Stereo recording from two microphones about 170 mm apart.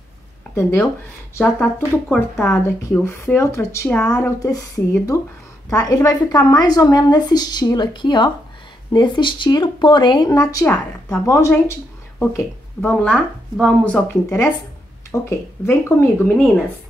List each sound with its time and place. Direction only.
0.6 s a woman's voice: 15° left (ahead or behind)